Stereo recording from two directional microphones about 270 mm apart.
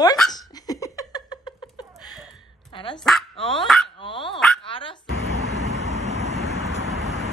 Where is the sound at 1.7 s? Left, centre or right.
Centre.